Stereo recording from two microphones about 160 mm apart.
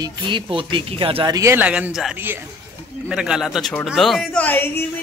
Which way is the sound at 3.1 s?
5° right (ahead or behind).